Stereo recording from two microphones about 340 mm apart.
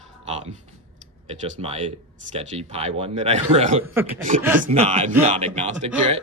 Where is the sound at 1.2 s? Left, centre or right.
Centre.